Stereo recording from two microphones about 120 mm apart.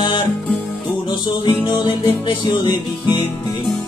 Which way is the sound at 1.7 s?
40° left (ahead or behind).